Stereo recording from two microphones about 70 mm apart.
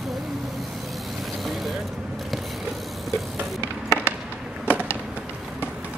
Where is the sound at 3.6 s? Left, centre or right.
Left.